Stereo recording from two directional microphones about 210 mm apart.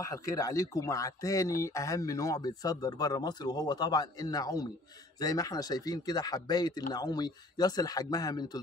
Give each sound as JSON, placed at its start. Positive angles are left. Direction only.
{"t": 0.4, "sound": "speech", "side_deg": 15}